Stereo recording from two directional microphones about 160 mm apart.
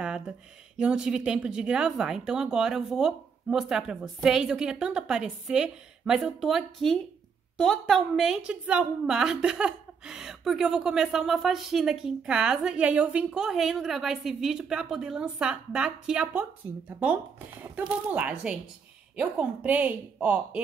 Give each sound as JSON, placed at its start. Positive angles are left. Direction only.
{"t": 0.7, "sound": "a woman's voice", "side_deg": -5}